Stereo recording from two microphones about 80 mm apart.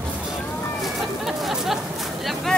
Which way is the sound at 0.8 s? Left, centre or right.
Centre.